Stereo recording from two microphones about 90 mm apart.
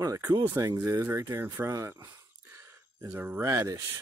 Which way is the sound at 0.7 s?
25° right (ahead or behind).